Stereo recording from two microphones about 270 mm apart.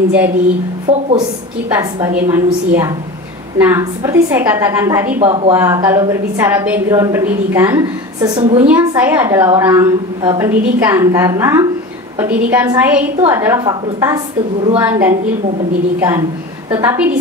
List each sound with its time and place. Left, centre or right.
0.9 s speech: right
1.8 s a woman's voice: centre
5.2 s speech: right
5.5 s a woman's voice: centre